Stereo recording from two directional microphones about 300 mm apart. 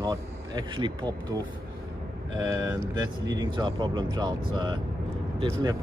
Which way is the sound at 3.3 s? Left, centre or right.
Centre.